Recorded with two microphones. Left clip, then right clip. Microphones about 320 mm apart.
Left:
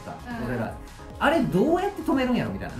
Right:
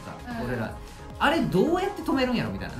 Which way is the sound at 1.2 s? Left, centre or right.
Centre.